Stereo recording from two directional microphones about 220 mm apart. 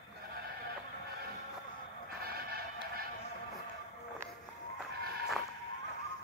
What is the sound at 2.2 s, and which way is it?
Music, 45° right (ahead or behind).